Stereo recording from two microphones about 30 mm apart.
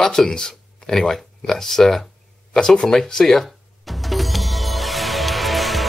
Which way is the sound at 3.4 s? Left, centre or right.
Centre.